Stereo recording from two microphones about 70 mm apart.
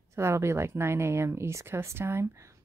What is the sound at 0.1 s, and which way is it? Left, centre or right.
A woman's voice, right.